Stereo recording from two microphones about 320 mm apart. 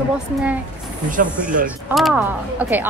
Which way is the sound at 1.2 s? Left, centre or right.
Right.